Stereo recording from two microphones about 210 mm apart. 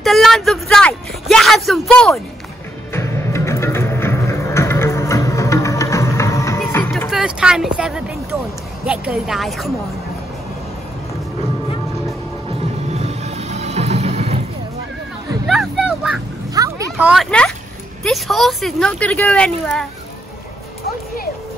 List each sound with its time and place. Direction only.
0.0 s speech: centre (ahead or behind)
2.9 s music: 15° left (ahead or behind)
7.1 s speech: 5° right (ahead or behind)
12.9 s music: 30° right (ahead or behind)
15.4 s music: centre (ahead or behind)
16.5 s a sound: 15° right (ahead or behind)
16.9 s speech: centre (ahead or behind)